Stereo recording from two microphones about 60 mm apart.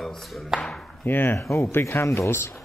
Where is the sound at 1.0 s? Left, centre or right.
Left.